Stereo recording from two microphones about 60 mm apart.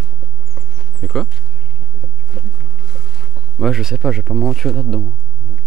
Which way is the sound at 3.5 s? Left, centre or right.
Centre.